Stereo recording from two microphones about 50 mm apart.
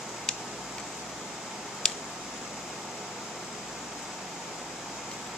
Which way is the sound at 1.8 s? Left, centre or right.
Centre.